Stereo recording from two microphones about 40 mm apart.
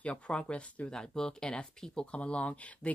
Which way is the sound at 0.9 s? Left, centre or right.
Centre.